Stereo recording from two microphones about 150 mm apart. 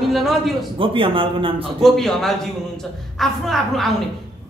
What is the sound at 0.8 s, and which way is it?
Speech, 35° right (ahead or behind).